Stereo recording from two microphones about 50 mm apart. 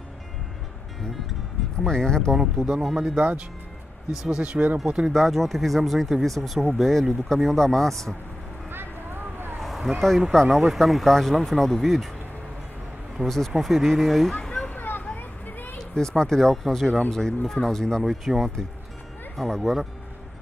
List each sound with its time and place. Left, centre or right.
1.9 s speech: centre
2.8 s speech: centre
4.4 s speech: right
5.1 s speech: centre
9.6 s a sound: centre
10.3 s speech: centre
13.2 s speech: centre
14.4 s a sound: centre
14.8 s a sound: left
15.8 s speech: centre
18.0 s speech: centre